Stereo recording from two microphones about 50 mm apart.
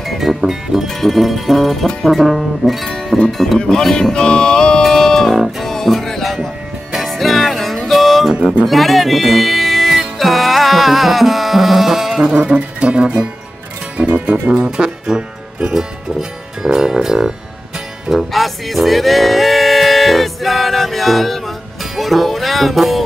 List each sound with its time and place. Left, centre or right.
0.0 s music: centre
0.8 s speech: centre
3.5 s speech: centre
3.9 s music: centre
5.3 s music: centre
8.6 s speech: centre
12.4 s speech: right
18.1 s music: centre